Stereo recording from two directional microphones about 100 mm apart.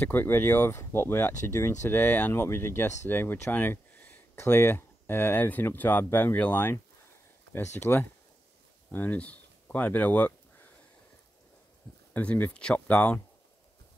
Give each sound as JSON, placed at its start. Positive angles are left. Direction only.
{"t": 0.0, "sound": "speech", "side_deg": 20}
{"t": 12.1, "sound": "speech", "side_deg": 15}